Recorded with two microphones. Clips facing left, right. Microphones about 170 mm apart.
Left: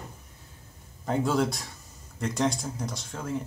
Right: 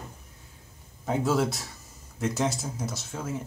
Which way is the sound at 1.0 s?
5° right (ahead or behind).